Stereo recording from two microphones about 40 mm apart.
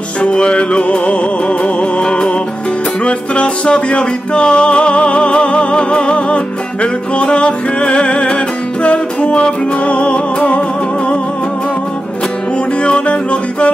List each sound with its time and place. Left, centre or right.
0.3 s music: left
12.8 s music: left